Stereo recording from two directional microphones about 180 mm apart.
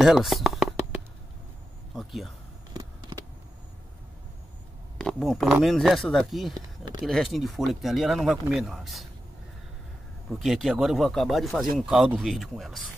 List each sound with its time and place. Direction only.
0.0 s music: centre (ahead or behind)
2.0 s speech: centre (ahead or behind)
2.7 s vehicle: 20° right (ahead or behind)
4.9 s speech: 5° left (ahead or behind)
6.8 s speech: 25° right (ahead or behind)
7.1 s speech: centre (ahead or behind)
10.3 s speech: centre (ahead or behind)